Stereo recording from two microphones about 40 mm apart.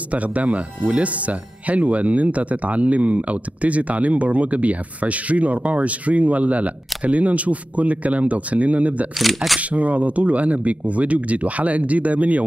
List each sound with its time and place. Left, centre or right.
0.1 s speech: right
9.2 s speech: centre
9.6 s speech: right